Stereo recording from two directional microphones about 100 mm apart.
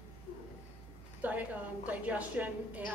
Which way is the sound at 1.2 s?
15° right (ahead or behind).